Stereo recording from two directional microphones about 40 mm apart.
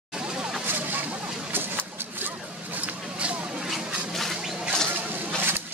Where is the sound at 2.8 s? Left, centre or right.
Right.